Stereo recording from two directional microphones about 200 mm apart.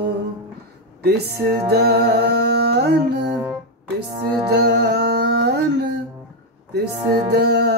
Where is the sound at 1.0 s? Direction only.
55° right (ahead or behind).